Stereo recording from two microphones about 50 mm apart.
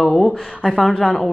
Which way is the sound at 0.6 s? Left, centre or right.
Centre.